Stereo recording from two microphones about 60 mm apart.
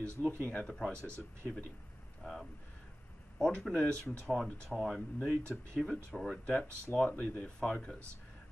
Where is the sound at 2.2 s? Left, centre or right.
Centre.